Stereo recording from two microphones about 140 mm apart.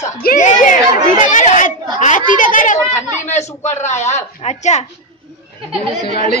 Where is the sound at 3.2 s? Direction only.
55° left (ahead or behind).